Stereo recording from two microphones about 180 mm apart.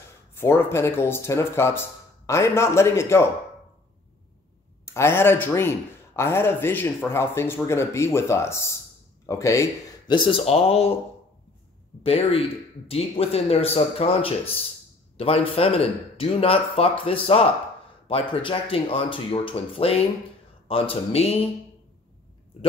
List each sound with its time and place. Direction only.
0.3 s a man's voice: 15° left (ahead or behind)
4.8 s a man's voice: 15° left (ahead or behind)
10.1 s speech: 30° left (ahead or behind)
12.0 s a man's voice: 35° left (ahead or behind)